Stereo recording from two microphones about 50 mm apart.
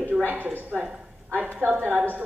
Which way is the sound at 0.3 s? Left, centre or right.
Right.